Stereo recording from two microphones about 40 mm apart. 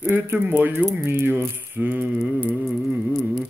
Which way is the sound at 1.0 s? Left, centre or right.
Right.